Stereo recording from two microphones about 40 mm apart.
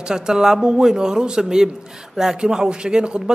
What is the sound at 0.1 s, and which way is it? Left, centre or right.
A man's voice, centre.